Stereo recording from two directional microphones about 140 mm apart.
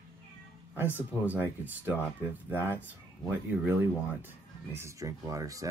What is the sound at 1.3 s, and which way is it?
Speech, 10° right (ahead or behind).